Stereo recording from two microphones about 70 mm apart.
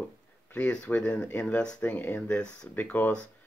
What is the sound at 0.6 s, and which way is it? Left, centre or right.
Speech, centre.